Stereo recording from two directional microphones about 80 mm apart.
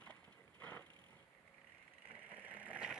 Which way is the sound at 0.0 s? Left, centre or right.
Centre.